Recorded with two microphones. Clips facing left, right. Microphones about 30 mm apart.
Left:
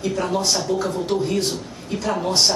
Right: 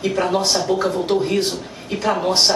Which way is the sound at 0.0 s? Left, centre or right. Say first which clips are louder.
Right 3 dB; right.